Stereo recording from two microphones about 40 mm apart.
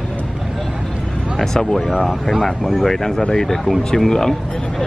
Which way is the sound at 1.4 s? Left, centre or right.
Centre.